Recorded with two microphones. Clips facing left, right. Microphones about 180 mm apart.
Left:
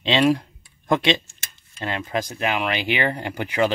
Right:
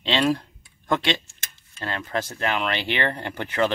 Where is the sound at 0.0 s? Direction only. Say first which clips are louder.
Left 4 dB; 15° left (ahead or behind).